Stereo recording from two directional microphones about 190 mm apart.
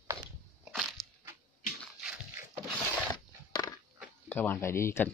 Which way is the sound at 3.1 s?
20° left (ahead or behind).